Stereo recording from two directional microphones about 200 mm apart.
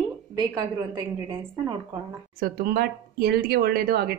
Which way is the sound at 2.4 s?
50° right (ahead or behind).